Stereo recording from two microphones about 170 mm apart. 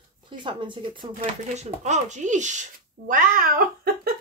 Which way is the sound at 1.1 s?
45° right (ahead or behind).